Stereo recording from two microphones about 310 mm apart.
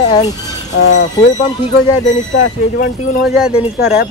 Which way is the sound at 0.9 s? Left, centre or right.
Left.